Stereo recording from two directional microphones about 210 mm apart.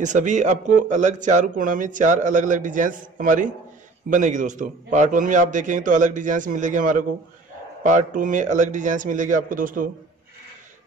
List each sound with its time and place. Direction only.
0.0 s speech: 35° right (ahead or behind)